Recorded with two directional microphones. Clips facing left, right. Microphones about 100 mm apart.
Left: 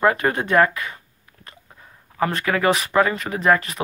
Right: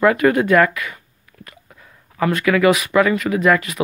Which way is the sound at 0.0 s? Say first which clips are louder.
Right 5 dB; 30° left (ahead or behind).